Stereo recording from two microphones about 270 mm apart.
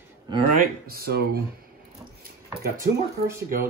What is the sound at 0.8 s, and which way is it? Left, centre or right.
Speech, right.